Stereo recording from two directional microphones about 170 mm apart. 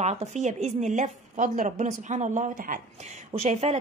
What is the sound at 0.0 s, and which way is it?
A woman's voice, 40° right (ahead or behind).